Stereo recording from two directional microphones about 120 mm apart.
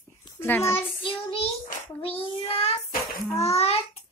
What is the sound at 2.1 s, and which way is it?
Child singing, 55° left (ahead or behind).